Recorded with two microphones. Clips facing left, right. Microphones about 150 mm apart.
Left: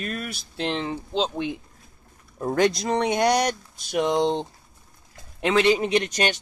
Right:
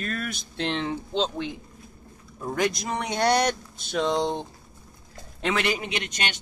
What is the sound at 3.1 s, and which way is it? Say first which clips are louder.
Speech: right 1 dB; 15° left (ahead or behind).